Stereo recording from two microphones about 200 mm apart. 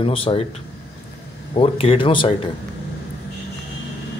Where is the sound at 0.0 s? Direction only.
25° left (ahead or behind).